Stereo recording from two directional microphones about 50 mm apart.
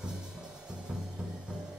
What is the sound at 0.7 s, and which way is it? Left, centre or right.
Music, centre.